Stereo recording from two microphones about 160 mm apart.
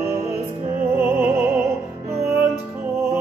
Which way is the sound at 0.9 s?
15° right (ahead or behind).